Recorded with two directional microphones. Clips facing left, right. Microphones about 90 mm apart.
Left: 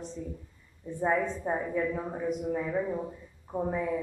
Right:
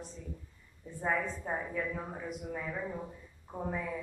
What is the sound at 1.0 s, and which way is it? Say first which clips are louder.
Speech: left 6 dB; 15° left (ahead or behind).